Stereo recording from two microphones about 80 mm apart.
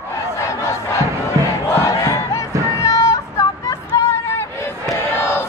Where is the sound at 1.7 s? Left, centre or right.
Left.